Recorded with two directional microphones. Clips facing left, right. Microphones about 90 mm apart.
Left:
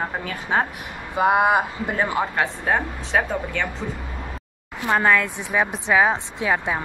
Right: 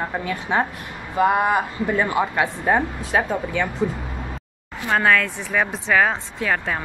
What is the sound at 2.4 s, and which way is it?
Speech, centre (ahead or behind).